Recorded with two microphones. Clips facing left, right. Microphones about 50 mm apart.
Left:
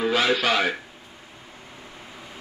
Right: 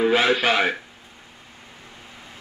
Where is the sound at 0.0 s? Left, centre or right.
Centre.